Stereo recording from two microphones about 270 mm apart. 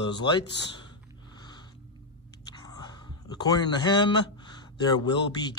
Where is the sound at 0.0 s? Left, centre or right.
Centre.